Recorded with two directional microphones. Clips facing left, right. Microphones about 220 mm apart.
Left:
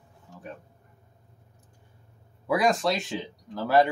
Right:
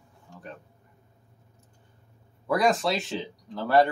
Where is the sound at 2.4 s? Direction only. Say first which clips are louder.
Even; centre (ahead or behind).